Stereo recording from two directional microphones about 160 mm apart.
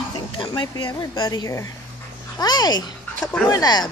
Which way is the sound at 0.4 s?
30° left (ahead or behind).